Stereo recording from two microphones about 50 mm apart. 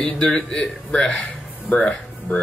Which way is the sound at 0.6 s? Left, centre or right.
Centre.